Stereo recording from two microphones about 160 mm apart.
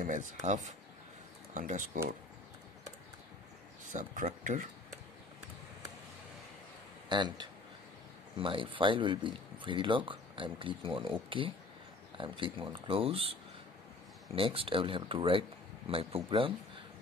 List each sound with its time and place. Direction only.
0.0 s speech: 50° right (ahead or behind)
3.9 s speech: 50° right (ahead or behind)
7.1 s speech: 30° right (ahead or behind)